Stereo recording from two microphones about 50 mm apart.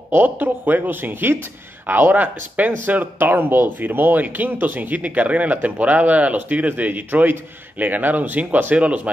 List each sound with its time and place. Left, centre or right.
0.2 s speech: right